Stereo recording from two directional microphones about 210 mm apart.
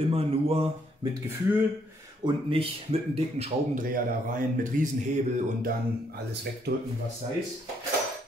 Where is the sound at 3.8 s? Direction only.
40° right (ahead or behind).